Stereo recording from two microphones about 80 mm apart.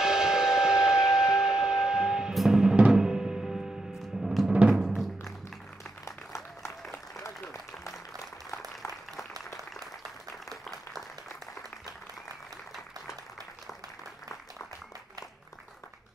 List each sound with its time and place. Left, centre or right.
0.0 s steam whistle: centre
2.7 s music: centre
4.5 s music: centre
6.0 s applause: left